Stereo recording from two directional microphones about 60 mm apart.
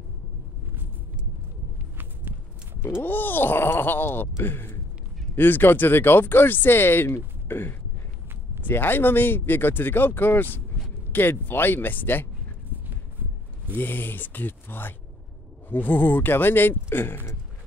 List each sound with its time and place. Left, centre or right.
2.0 s horse: right
2.8 s speech: left
7.4 s a sound: left
8.6 s speech: left
13.7 s speech: left